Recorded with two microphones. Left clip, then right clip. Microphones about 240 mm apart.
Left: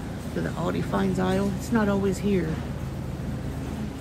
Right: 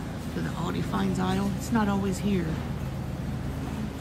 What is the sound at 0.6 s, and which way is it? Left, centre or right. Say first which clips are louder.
Speech: left 4 dB; centre.